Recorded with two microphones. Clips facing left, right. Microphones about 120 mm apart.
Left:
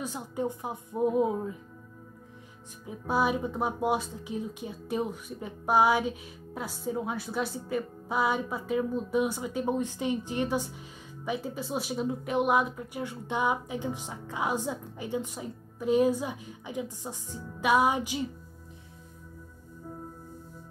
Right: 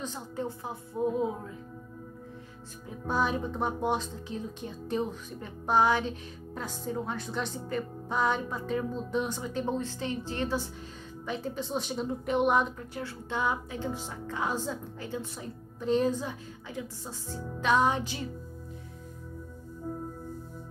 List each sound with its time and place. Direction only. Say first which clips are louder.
0.0 s speech: left 3 dB; 15° left (ahead or behind)
2.9 s speech: left 2 dB; 10° left (ahead or behind)